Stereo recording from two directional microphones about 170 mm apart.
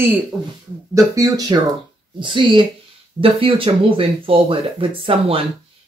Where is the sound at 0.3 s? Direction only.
Centre (ahead or behind).